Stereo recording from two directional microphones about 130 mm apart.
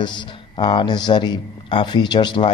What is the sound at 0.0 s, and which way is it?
Speech, 35° left (ahead or behind).